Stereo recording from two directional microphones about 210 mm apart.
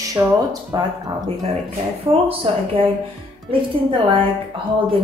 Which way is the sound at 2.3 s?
25° right (ahead or behind).